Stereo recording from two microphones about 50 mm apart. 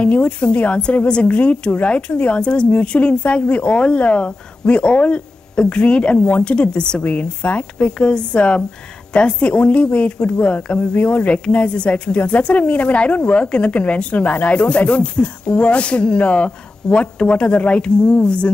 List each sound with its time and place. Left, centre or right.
0.0 s speech: left